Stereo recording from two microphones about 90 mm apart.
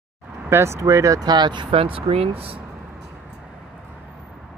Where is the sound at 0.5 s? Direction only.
30° right (ahead or behind); by 2.6 s 85° right.